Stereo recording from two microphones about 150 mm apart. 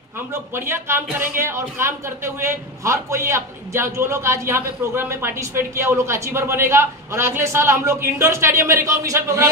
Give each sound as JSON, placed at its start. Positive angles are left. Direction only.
{"t": 0.3, "sound": "speech", "side_deg": -15}